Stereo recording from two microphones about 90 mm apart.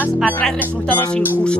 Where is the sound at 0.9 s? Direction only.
20° left (ahead or behind).